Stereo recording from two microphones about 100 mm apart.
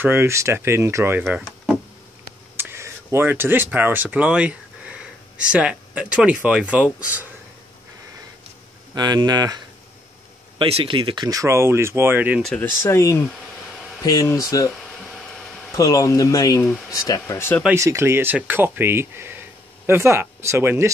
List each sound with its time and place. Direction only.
0.0 s speech: 25° right (ahead or behind)
2.5 s speech: 25° right (ahead or behind)
8.9 s speech: 45° right (ahead or behind)
10.6 s speech: 65° right (ahead or behind); by 12.4 s 20° right (ahead or behind)
12.8 s speech: 30° left (ahead or behind)
15.0 s a sound: 5° left (ahead or behind)
15.7 s speech: 35° left (ahead or behind)
17.7 s speech: 30° right (ahead or behind)